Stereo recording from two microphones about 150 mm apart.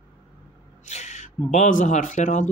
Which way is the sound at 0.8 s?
50° left (ahead or behind).